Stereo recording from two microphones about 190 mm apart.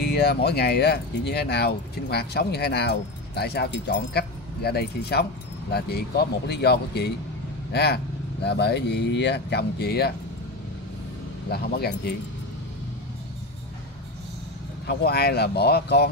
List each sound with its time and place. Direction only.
0.0 s speech: 55° left (ahead or behind)
11.5 s speech: 55° left (ahead or behind)
14.9 s speech: 55° left (ahead or behind)